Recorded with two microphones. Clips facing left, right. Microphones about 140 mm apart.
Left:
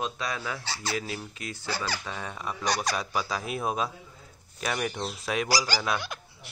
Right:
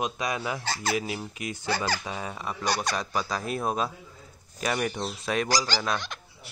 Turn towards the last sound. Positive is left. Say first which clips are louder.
# even
turn(degrees=5)  # may be behind; listen again after turning